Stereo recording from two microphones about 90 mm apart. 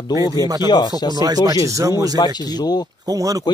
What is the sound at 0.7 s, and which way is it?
Speech, 50° left (ahead or behind).